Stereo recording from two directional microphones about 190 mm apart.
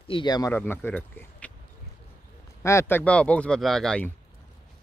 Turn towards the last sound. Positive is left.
turn(degrees=5)  # may be behind; listen again after turning